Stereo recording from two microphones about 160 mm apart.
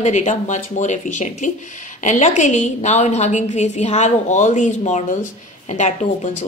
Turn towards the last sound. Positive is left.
turn(degrees=50)  # may be behind; listen again after turning